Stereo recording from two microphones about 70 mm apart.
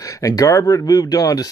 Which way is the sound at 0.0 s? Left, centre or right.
Left.